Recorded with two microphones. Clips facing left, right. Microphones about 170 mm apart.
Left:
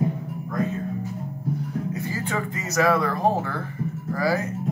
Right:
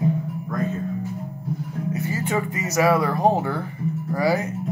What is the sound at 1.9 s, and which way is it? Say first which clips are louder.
Speech: right 3 dB; 20° right (ahead or behind).